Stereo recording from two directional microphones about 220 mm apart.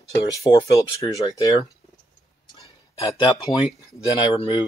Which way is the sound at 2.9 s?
15° left (ahead or behind).